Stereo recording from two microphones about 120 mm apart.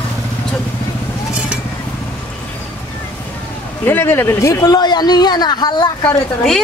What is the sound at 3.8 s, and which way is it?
Speech, 20° left (ahead or behind).